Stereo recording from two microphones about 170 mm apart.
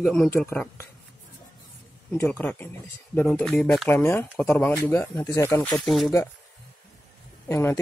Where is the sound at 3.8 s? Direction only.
10° left (ahead or behind).